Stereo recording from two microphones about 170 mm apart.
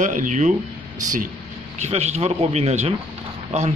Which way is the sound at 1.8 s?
40° right (ahead or behind).